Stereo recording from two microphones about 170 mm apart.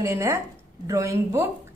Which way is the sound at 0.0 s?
15° right (ahead or behind).